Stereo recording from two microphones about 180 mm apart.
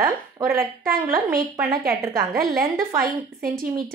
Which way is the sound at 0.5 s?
55° right (ahead or behind).